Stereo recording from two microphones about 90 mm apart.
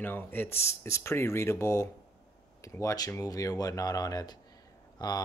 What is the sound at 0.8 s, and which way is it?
Speech, 35° left (ahead or behind).